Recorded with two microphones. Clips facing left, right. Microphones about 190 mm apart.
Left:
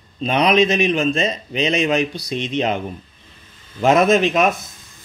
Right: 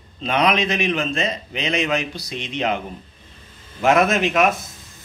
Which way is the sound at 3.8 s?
20° left (ahead or behind).